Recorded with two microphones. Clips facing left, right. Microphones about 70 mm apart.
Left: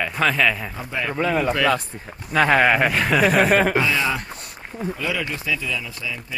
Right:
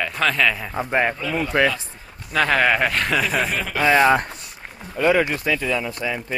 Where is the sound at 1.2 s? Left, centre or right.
Left.